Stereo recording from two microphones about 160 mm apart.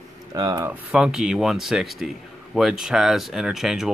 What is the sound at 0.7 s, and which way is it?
A man's voice, 5° right (ahead or behind).